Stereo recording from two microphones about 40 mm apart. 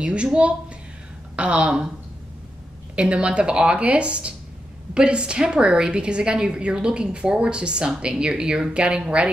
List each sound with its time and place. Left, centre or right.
0.0 s a woman's voice: right
3.0 s a woman's voice: right